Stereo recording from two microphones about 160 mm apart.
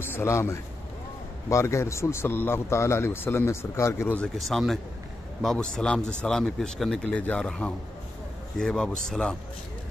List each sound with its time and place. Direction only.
0.0 s a man's voice: 15° left (ahead or behind)
4.4 s speech: centre (ahead or behind)